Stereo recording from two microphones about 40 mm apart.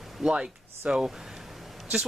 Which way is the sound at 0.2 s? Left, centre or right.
Right.